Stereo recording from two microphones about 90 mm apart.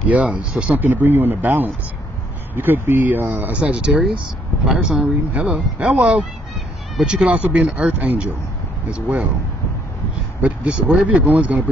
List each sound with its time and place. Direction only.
0.1 s speech: 15° right (ahead or behind)
7.2 s speech: 20° right (ahead or behind)
10.4 s speech: 10° right (ahead or behind)